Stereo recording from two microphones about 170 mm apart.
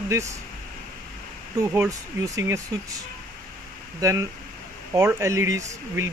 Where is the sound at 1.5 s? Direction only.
15° right (ahead or behind).